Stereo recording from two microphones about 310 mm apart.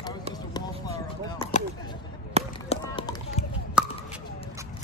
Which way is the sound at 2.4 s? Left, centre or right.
Centre.